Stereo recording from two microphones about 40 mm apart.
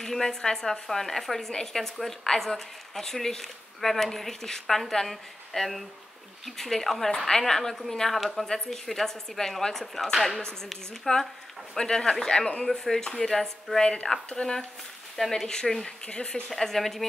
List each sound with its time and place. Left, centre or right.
0.0 s a woman's voice: centre
10.1 s speech: centre
10.4 s a woman's voice: centre
16.1 s a woman's voice: left
16.4 s a woman's voice: centre